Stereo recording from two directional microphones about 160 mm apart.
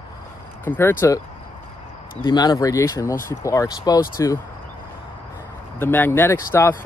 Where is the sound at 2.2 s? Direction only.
25° left (ahead or behind).